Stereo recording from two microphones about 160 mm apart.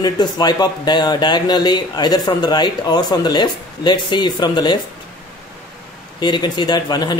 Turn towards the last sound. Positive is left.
turn(degrees=25)  # may be behind; listen again after turning